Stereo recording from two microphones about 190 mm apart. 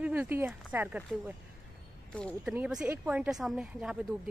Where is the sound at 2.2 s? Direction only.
5° left (ahead or behind).